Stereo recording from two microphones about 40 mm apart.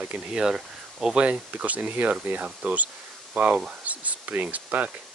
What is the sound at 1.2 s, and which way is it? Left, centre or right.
Speech, right.